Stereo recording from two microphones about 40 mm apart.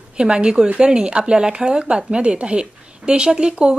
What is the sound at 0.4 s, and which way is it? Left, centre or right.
Speech, right.